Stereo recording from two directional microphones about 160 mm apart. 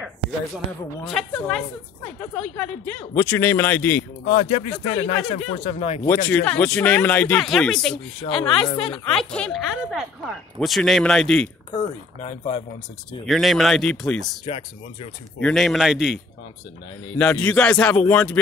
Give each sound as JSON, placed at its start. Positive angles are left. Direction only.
{"t": 1.0, "sound": "speech", "side_deg": 5}
{"t": 4.3, "sound": "speech", "side_deg": 40}
{"t": 6.0, "sound": "speech", "side_deg": 10}
{"t": 8.6, "sound": "speech", "side_deg": 35}
{"t": 9.1, "sound": "speech", "side_deg": 5}
{"t": 11.7, "sound": "speech", "side_deg": 35}
{"t": 13.2, "sound": "speech", "side_deg": 0}
{"t": 14.4, "sound": "speech", "side_deg": 35}
{"t": 15.4, "sound": "speech", "side_deg": 0}
{"t": 17.2, "sound": "speech", "side_deg": 5}